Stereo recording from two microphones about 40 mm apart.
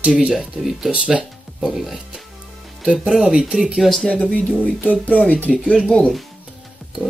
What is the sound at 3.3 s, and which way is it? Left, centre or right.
Speech, right.